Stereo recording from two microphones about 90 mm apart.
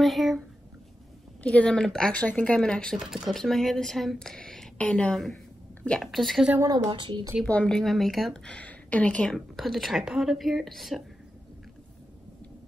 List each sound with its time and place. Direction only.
0.0 s speech: centre (ahead or behind)
1.4 s speech: 15° left (ahead or behind)
3.0 s a woman's voice: 5° right (ahead or behind)
6.9 s speech: 65° right (ahead or behind)
7.4 s a woman's voice: 10° left (ahead or behind)
8.5 s a woman's voice: 15° left (ahead or behind)